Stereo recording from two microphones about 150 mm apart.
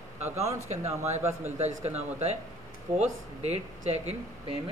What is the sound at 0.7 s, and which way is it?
Speech, 20° right (ahead or behind).